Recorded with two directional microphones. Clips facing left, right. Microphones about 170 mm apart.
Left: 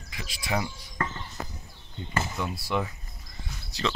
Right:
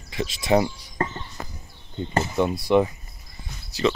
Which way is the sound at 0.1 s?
25° right (ahead or behind).